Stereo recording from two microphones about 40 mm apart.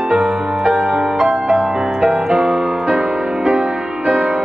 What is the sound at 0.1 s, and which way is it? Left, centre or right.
Music, centre.